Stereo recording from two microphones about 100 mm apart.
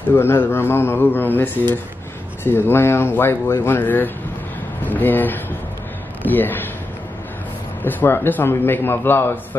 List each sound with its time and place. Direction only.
0.1 s a man's voice: 20° left (ahead or behind)
7.8 s a man's voice: 20° left (ahead or behind)